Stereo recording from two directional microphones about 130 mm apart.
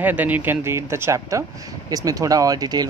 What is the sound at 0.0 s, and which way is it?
Speech, 15° right (ahead or behind).